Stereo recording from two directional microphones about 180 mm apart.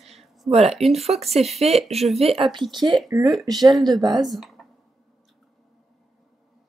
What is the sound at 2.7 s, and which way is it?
Speech, 25° right (ahead or behind).